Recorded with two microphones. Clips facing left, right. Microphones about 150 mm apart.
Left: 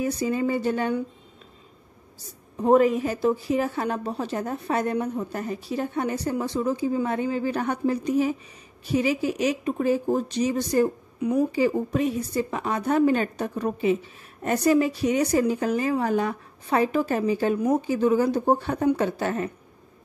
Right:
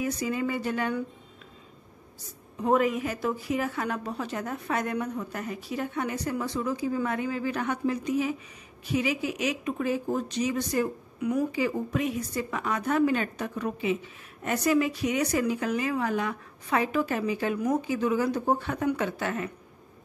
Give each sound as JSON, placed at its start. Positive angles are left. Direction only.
{"t": 0.0, "sound": "speech", "side_deg": 30}
{"t": 2.6, "sound": "speech", "side_deg": 35}